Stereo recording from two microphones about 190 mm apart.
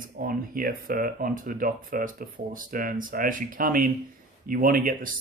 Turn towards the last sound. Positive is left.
turn(degrees=-45)  # may be behind; listen again after turning